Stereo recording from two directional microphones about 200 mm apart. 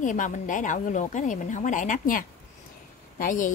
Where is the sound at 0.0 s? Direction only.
40° left (ahead or behind).